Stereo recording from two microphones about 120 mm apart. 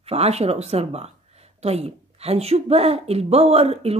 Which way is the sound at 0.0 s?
60° right (ahead or behind).